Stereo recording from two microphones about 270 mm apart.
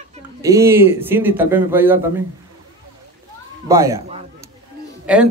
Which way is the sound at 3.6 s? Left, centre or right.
Centre.